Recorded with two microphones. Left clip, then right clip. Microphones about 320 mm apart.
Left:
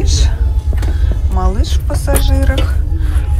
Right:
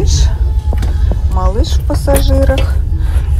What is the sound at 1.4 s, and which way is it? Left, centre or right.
Speech, centre.